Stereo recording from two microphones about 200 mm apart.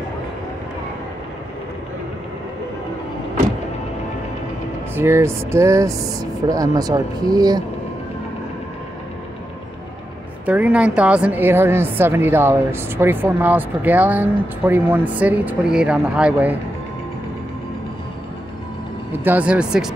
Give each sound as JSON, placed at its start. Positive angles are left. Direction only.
{"t": 4.9, "sound": "a woman's voice", "side_deg": -10}
{"t": 10.4, "sound": "a woman's voice", "side_deg": -5}
{"t": 19.2, "sound": "speech", "side_deg": -5}